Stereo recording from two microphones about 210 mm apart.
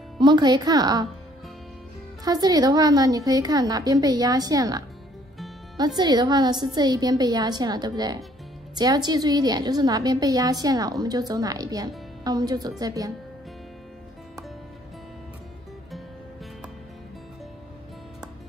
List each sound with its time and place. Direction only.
0.2 s a woman's voice: 20° right (ahead or behind)
2.2 s a woman's voice: 20° right (ahead or behind)